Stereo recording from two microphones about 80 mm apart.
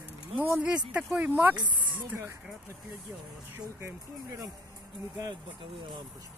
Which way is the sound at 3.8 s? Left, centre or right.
Right.